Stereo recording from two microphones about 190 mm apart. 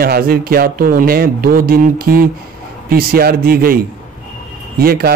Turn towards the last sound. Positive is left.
turn(degrees=-50)  # may be behind; listen again after turning